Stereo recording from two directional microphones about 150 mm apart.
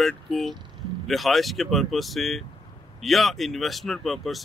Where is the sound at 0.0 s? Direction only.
Centre (ahead or behind).